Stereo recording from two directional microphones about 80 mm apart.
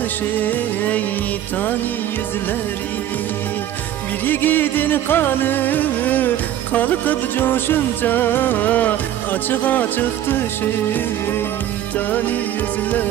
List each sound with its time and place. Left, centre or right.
0.4 s music: left
4.3 s music: left